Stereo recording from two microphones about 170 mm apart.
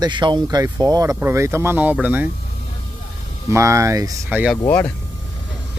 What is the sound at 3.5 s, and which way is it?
Speech, 15° right (ahead or behind).